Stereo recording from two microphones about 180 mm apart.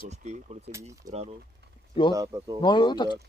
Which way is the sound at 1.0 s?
20° right (ahead or behind).